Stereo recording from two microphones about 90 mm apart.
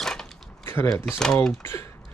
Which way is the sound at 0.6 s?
30° left (ahead or behind).